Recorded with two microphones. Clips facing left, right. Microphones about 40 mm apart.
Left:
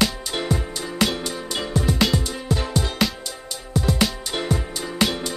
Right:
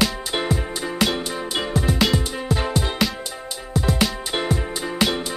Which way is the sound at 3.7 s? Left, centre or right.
Centre.